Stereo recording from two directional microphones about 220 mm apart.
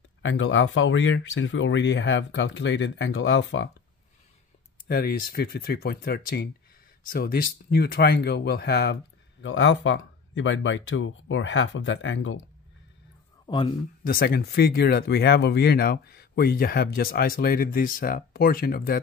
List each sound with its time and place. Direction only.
0.2 s speech: 60° left (ahead or behind)
4.8 s speech: 40° left (ahead or behind)
9.4 s speech: 60° left (ahead or behind)
13.5 s speech: 20° left (ahead or behind)
14.0 s speech: 40° left (ahead or behind)